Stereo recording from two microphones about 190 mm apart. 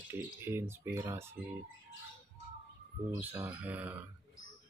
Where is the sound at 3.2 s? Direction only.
10° right (ahead or behind).